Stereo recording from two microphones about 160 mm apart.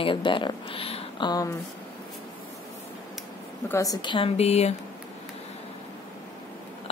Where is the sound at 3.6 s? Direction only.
20° left (ahead or behind); by 4.7 s 40° left (ahead or behind).